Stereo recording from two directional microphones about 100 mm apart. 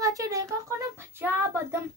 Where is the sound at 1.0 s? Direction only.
25° right (ahead or behind).